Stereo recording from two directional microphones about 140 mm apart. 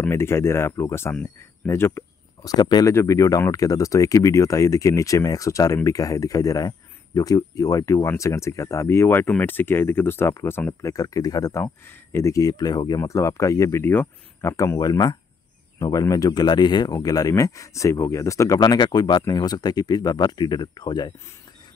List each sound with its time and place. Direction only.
0.0 s speech: 15° left (ahead or behind)